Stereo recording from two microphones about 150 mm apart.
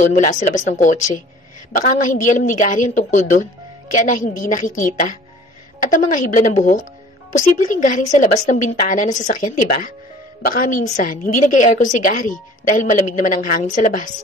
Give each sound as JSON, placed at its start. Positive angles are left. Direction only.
{"t": 0.0, "sound": "a woman's voice", "side_deg": 55}